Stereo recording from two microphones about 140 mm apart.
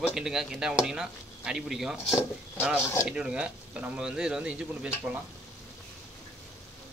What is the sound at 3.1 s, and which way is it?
Speech, 5° right (ahead or behind).